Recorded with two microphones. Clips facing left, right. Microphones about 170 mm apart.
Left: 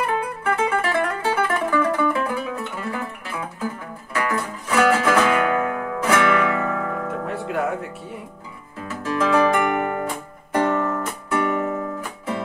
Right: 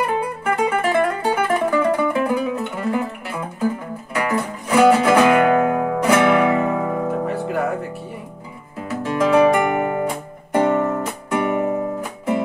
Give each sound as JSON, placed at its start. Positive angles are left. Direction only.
{"t": 0.5, "sound": "music", "side_deg": -15}
{"t": 7.1, "sound": "music", "side_deg": 0}
{"t": 8.8, "sound": "music", "side_deg": -20}
{"t": 10.5, "sound": "music", "side_deg": -15}